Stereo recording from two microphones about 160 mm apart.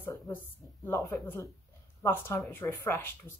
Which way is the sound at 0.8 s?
15° left (ahead or behind).